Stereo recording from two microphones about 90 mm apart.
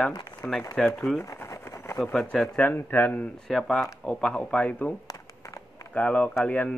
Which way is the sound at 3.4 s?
Centre (ahead or behind).